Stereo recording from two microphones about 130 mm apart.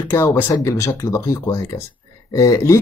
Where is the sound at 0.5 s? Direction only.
25° left (ahead or behind).